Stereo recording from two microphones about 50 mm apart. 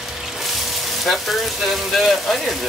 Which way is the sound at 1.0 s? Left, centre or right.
Centre.